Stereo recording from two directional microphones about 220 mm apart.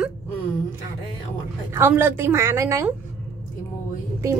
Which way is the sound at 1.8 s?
10° right (ahead or behind).